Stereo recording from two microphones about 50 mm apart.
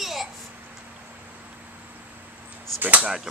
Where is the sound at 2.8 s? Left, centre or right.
Right.